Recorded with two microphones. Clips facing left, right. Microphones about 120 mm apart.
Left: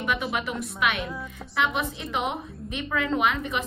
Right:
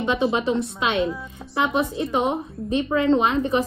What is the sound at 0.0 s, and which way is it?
Speech, 25° right (ahead or behind).